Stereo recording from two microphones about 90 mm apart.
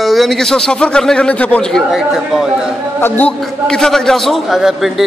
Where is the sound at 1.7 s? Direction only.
Centre (ahead or behind).